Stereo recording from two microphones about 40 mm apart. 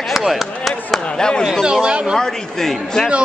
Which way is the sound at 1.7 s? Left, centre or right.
Right.